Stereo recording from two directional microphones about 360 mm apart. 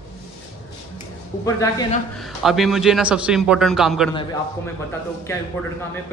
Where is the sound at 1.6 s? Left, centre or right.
Centre.